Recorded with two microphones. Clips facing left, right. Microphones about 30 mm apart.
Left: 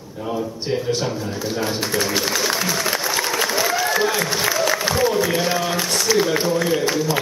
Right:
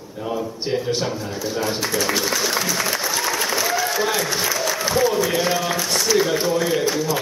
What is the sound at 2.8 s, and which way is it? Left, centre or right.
Applause, centre.